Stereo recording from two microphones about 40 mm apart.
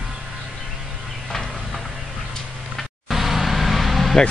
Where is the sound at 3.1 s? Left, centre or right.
Centre.